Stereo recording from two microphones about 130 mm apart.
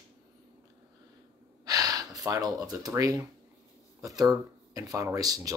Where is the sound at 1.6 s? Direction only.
30° right (ahead or behind).